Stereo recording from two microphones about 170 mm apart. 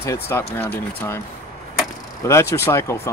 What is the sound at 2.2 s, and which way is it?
Speech, 15° left (ahead or behind).